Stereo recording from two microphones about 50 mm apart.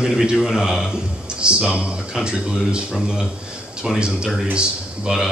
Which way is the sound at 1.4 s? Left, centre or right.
Centre.